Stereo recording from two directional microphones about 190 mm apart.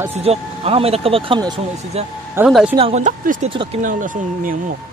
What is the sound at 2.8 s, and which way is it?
Speech, 35° right (ahead or behind).